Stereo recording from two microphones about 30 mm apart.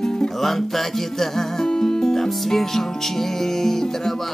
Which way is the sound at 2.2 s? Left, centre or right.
Centre.